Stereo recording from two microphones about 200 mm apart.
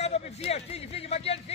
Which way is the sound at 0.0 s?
30° left (ahead or behind).